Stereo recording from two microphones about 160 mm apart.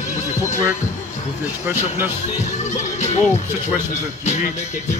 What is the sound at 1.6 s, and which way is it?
Speech, 10° right (ahead or behind).